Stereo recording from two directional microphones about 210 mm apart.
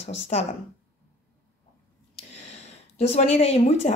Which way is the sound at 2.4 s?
30° left (ahead or behind).